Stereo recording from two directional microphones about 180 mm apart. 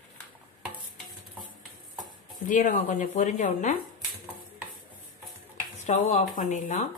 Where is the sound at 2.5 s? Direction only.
45° left (ahead or behind).